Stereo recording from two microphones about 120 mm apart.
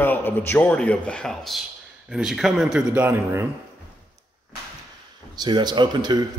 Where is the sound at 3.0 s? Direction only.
20° right (ahead or behind).